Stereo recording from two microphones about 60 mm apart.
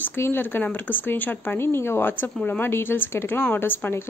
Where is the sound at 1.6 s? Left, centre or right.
Left.